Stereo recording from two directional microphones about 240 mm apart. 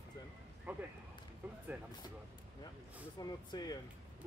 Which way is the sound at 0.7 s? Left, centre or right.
Centre.